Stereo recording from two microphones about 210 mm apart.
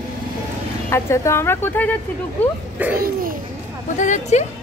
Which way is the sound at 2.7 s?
10° right (ahead or behind).